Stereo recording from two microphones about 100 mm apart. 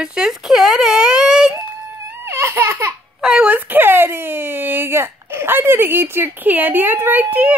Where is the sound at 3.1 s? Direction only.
10° right (ahead or behind).